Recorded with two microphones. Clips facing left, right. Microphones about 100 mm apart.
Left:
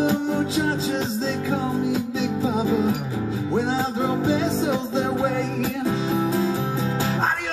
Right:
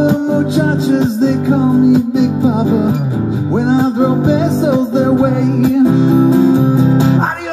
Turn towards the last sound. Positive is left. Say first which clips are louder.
# right 13 dB
turn(degrees=-20)  # may be behind; listen again after turning